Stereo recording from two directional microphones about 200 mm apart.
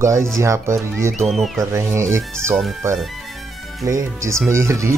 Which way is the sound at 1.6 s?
15° right (ahead or behind).